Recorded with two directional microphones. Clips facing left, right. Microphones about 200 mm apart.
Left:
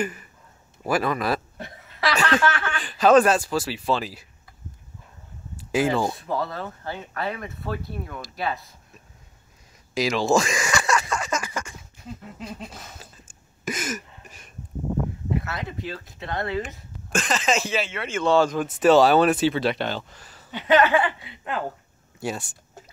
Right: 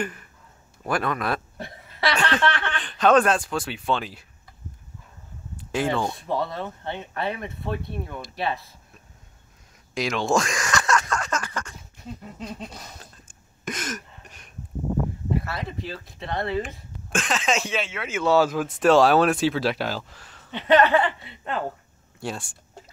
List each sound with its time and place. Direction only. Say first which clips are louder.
0.0 s a man's voice: left 2 dB; 5° left (ahead or behind)
5.7 s speech: left 3 dB; 5° left (ahead or behind)
6.2 s speech: right 1 dB; 25° right (ahead or behind)
9.9 s a sound: left 2 dB; 5° left (ahead or behind)
15.3 s speech: even; centre (ahead or behind)